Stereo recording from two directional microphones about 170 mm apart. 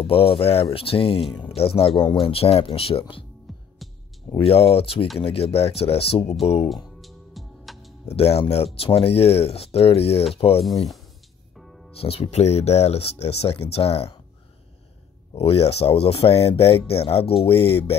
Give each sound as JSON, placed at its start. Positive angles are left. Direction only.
{"t": 0.0, "sound": "speech", "side_deg": 35}
{"t": 3.5, "sound": "music", "side_deg": 0}
{"t": 4.4, "sound": "speech", "side_deg": 35}
{"t": 7.0, "sound": "music", "side_deg": 0}
{"t": 8.1, "sound": "speech", "side_deg": 35}
{"t": 11.5, "sound": "music", "side_deg": 0}
{"t": 12.0, "sound": "speech", "side_deg": 35}
{"t": 15.3, "sound": "speech", "side_deg": 35}